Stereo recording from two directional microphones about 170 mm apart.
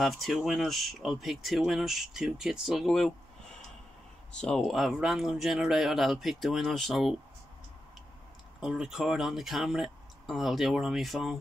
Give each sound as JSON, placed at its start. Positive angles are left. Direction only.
{"t": 0.0, "sound": "speech", "side_deg": 0}
{"t": 4.3, "sound": "speech", "side_deg": 5}
{"t": 8.5, "sound": "speech", "side_deg": -5}